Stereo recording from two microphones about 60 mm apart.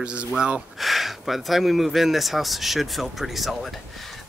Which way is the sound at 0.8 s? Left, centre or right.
Centre.